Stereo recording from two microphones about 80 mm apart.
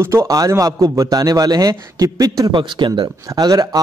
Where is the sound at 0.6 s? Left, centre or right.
Right.